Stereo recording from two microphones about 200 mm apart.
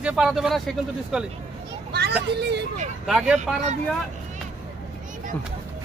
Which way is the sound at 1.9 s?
55° right (ahead or behind).